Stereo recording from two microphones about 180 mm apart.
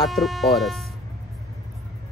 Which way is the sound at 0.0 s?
Centre (ahead or behind).